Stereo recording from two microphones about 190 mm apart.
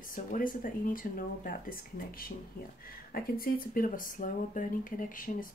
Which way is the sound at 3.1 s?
50° left (ahead or behind).